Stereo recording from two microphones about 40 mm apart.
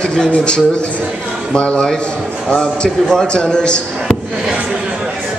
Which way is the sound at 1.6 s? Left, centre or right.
Left.